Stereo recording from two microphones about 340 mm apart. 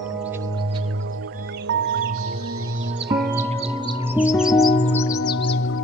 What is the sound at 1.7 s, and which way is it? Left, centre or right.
Music, right.